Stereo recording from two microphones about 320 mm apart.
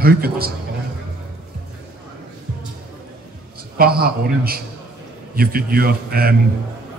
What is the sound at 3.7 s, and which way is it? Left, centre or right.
A man's voice, right.